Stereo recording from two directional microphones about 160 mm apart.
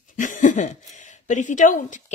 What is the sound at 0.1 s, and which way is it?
Speech, 55° left (ahead or behind).